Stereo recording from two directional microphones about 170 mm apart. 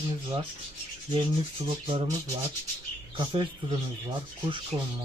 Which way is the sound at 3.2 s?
30° right (ahead or behind).